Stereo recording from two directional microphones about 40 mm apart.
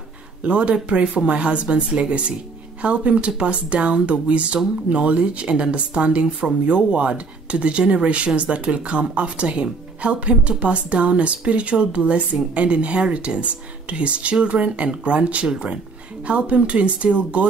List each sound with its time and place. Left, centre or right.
0.4 s speech: right